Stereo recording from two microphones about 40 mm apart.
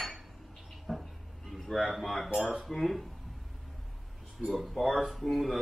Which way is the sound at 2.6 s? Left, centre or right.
Centre.